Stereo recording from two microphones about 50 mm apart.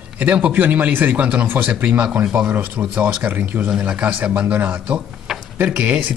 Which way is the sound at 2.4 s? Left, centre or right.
Right.